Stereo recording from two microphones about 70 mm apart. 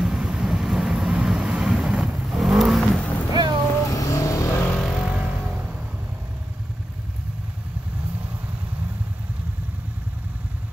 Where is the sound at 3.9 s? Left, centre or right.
Left.